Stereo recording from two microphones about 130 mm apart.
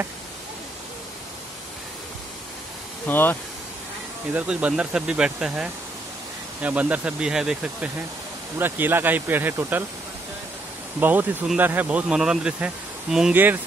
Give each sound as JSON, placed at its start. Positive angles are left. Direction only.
{"t": 3.1, "sound": "speech", "side_deg": 15}
{"t": 4.3, "sound": "speech", "side_deg": -10}
{"t": 11.0, "sound": "speech", "side_deg": -15}